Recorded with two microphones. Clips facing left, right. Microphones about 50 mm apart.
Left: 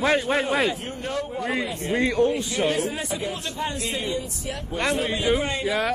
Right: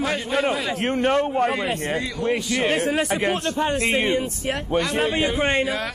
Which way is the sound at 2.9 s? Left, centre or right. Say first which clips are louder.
Right 7 dB; right.